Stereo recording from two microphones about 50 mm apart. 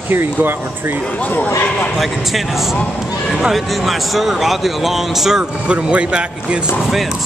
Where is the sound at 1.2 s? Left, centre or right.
Left.